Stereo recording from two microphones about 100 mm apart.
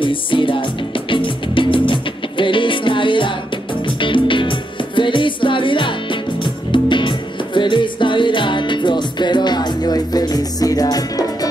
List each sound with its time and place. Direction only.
0.0 s music: 55° left (ahead or behind); by 11.2 s 40° left (ahead or behind)